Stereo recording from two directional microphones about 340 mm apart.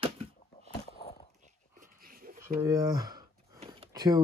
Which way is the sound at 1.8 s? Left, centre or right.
Right.